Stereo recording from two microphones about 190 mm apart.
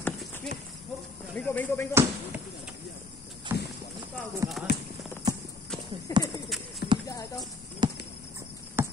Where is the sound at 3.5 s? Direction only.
10° right (ahead or behind).